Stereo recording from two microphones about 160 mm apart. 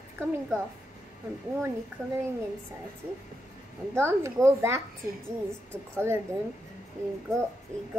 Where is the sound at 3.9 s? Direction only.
15° right (ahead or behind).